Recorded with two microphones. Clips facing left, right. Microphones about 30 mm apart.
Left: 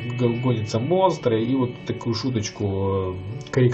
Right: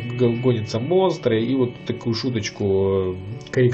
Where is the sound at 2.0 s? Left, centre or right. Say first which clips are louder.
Right 1 dB; right.